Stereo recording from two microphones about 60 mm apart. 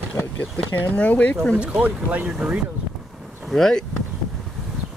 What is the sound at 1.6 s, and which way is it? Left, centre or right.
Speech, centre.